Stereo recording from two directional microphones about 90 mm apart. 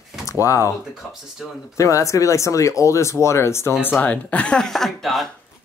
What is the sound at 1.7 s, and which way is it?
Speech, 35° left (ahead or behind).